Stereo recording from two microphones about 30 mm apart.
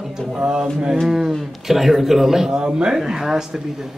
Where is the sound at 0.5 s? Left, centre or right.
Right.